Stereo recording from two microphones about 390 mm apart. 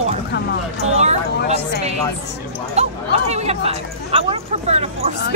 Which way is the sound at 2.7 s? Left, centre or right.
Centre.